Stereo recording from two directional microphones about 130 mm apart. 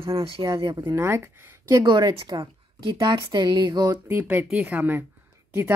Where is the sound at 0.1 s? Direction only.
45° right (ahead or behind); by 1.9 s 20° right (ahead or behind).